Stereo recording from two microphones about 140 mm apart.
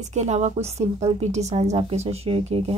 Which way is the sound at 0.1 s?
55° right (ahead or behind).